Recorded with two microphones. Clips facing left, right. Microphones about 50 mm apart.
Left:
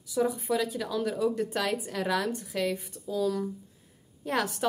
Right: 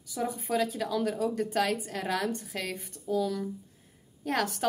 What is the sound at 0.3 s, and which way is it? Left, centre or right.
A woman's voice, right.